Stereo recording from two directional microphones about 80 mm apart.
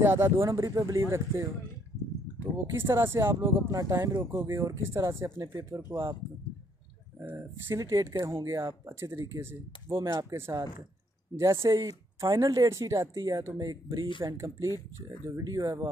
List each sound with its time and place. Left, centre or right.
0.0 s speech: right
3.7 s speech: right
7.3 s speech: right
14.2 s speech: right
15.4 s speech: right